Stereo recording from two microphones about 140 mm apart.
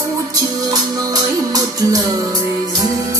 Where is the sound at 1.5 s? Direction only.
25° right (ahead or behind).